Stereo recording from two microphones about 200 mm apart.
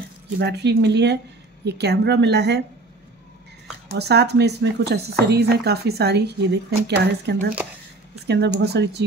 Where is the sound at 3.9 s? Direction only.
55° right (ahead or behind).